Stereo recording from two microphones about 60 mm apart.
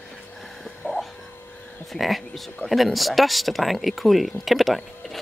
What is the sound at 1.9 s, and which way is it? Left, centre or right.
Speech, centre.